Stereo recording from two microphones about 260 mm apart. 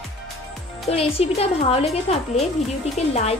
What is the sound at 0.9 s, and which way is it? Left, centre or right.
Speech, left.